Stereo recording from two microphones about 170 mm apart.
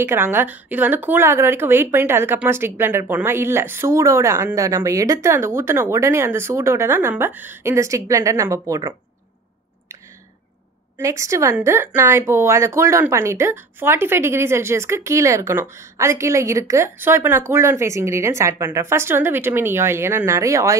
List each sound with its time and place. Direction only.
0.0 s speech: 15° right (ahead or behind)
11.0 s speech: 15° right (ahead or behind)